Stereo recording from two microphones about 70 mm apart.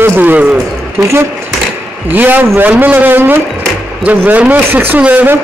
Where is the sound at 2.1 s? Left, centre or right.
Right.